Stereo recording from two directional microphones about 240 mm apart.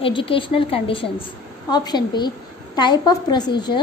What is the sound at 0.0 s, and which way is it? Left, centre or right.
A woman's voice, left.